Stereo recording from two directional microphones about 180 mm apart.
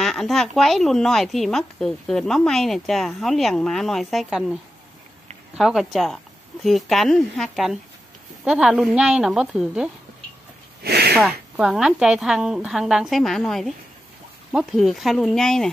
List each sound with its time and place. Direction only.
0.0 s a woman's voice: centre (ahead or behind)
5.6 s a woman's voice: centre (ahead or behind)
10.8 s a sound: 60° right (ahead or behind)
11.1 s a woman's voice: 5° right (ahead or behind)